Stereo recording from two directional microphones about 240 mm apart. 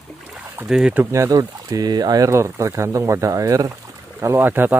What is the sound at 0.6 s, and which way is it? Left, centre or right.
Speech, centre.